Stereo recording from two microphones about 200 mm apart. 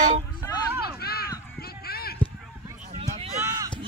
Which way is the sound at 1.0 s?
50° left (ahead or behind).